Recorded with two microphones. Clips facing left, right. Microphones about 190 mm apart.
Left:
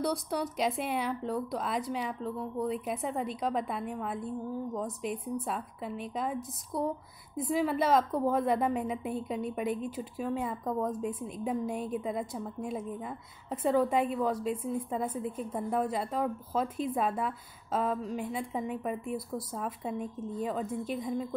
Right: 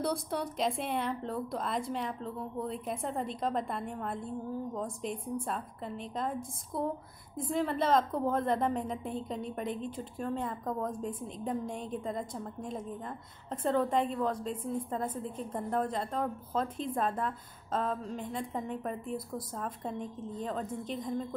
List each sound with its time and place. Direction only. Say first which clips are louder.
0.0 s a woman's voice: left 1 dB; centre (ahead or behind)